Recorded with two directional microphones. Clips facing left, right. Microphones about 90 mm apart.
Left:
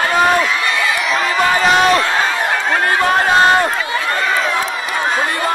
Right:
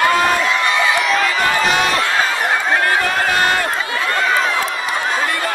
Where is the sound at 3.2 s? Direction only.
25° left (ahead or behind).